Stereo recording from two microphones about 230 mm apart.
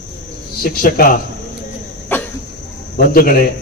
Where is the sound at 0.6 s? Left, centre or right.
Left.